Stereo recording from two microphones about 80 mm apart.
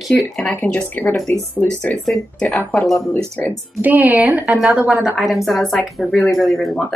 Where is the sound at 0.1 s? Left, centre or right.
Left.